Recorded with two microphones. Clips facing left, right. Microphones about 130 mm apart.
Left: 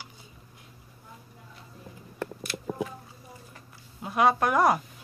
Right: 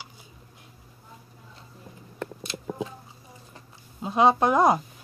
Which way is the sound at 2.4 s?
20° right (ahead or behind).